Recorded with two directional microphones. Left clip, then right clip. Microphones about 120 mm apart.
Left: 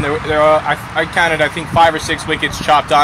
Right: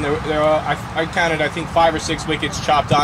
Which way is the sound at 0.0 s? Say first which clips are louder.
Left 5 dB; 30° left (ahead or behind).